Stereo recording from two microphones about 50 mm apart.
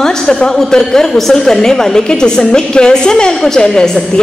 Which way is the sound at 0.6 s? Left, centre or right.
Centre.